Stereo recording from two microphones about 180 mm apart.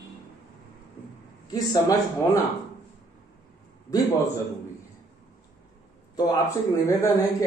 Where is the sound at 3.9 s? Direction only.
20° left (ahead or behind).